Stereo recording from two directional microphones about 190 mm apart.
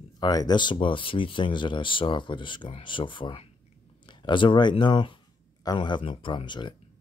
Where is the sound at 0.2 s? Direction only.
20° left (ahead or behind).